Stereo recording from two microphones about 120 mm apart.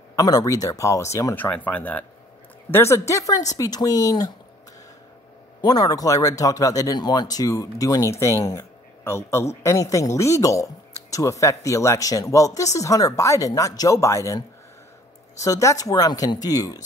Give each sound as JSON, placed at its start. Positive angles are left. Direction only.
{"t": 0.1, "sound": "speech", "side_deg": 30}
{"t": 5.6, "sound": "speech", "side_deg": 35}